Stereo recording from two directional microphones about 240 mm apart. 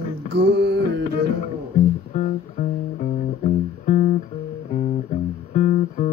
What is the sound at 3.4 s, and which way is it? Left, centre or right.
Music, left.